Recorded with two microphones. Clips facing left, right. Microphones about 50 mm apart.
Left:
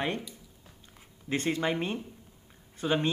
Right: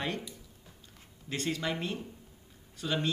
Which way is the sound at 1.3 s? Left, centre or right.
Left.